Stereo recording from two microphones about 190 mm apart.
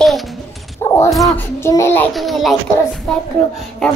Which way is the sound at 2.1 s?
Centre (ahead or behind).